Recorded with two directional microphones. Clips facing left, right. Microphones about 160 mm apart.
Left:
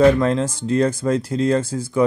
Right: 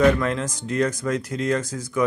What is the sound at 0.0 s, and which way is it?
Speech, 30° left (ahead or behind).